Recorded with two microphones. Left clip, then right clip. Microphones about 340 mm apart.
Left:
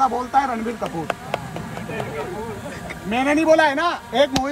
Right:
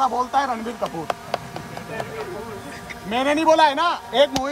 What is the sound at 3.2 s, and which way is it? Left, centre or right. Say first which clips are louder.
Speech: even; centre.